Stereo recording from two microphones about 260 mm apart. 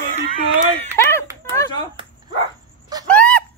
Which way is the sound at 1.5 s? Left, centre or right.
Centre.